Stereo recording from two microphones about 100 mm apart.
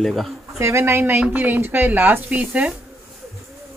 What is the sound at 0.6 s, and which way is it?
Speech, 30° right (ahead or behind).